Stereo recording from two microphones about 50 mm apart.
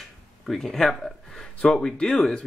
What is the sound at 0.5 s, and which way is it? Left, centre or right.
Speech, centre.